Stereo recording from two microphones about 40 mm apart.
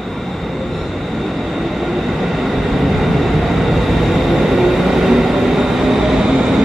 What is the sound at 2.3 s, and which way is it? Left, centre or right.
Vehicle, centre.